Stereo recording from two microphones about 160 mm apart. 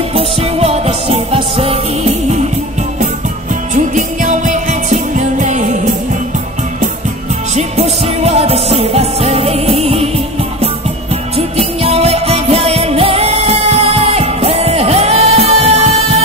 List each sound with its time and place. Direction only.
0.1 s music: 40° right (ahead or behind)
3.7 s music: 50° right (ahead or behind)
7.5 s music: 40° right (ahead or behind)